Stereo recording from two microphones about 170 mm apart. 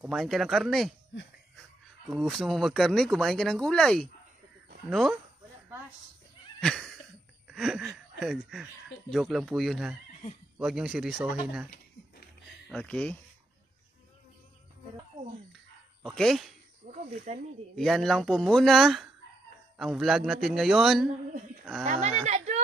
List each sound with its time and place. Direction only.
0.0 s speech: centre (ahead or behind)
6.6 s cat: centre (ahead or behind)
7.4 s speech: centre (ahead or behind)
12.6 s speech: 5° left (ahead or behind)
16.2 s speech: centre (ahead or behind)
16.9 s speech: 45° right (ahead or behind)
17.7 s speech: centre (ahead or behind)
21.8 s speech: 40° right (ahead or behind)